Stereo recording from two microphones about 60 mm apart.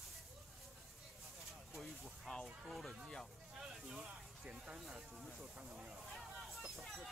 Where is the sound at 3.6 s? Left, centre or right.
Centre.